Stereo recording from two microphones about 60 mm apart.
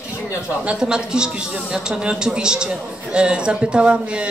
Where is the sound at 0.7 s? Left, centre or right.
Centre.